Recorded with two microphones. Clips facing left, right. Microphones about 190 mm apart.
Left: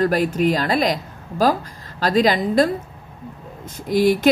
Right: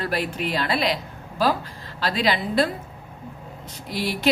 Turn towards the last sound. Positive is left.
turn(degrees=45)  # may be behind; listen again after turning